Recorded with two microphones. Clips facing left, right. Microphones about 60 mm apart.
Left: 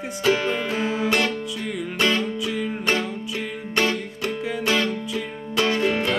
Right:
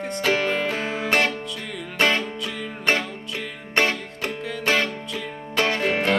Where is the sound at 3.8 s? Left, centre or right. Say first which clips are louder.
Right 1 dB; right.